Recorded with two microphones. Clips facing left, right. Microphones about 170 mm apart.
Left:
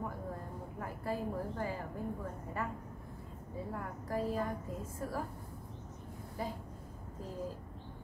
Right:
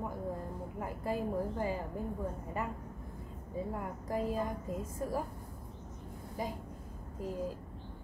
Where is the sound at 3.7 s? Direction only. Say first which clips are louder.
Even; 15° right (ahead or behind).